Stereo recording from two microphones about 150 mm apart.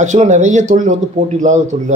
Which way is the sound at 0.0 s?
50° right (ahead or behind).